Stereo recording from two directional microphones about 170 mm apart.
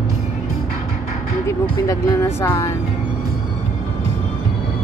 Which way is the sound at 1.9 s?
15° left (ahead or behind).